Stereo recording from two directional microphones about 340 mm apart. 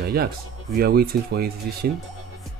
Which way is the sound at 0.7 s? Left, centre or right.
Right.